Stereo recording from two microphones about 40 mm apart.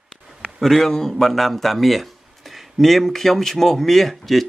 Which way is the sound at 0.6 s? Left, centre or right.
Centre.